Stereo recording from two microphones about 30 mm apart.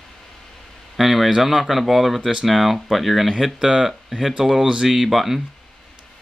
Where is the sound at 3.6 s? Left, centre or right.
Centre.